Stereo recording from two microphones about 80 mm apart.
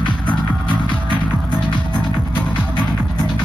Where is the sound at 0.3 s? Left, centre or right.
Centre.